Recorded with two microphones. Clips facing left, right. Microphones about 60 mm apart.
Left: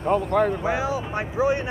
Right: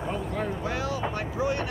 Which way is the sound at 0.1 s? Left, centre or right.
Left.